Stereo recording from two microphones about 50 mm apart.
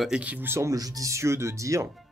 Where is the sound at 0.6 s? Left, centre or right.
Right.